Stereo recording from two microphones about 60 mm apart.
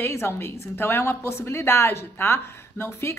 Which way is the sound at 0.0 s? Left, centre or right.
Left.